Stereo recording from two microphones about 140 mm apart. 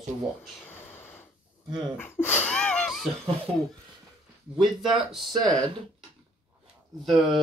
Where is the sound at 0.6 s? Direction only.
15° left (ahead or behind).